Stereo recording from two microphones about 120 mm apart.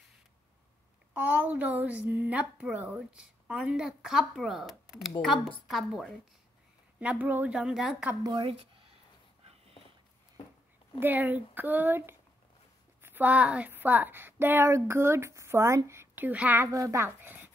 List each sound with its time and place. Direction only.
1.1 s a woman's voice: 15° right (ahead or behind)
8.2 s a sound: 40° right (ahead or behind)
11.0 s a woman's voice: 15° right (ahead or behind)
16.6 s speech: 30° right (ahead or behind)